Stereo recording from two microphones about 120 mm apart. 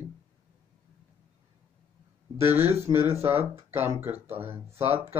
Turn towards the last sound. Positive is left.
turn(degrees=-20)  # may be behind; listen again after turning